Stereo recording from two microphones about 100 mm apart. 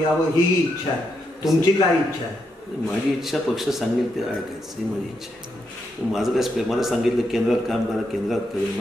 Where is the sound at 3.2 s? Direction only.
Centre (ahead or behind).